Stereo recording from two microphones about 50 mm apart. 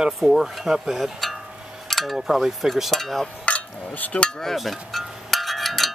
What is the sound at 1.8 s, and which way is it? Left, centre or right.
Cowbell, centre.